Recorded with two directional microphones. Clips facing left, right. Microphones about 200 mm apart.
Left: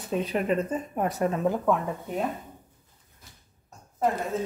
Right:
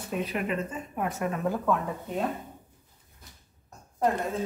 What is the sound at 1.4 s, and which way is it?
Speech, 20° left (ahead or behind).